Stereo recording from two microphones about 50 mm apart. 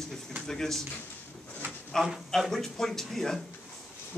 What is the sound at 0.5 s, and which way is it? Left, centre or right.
Speech, centre.